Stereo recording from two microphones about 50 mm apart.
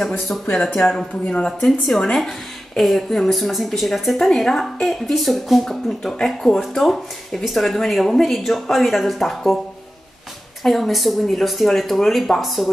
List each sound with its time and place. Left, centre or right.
0.6 s speech: centre
0.9 s speech: left
1.6 s speech: centre
10.6 s speech: centre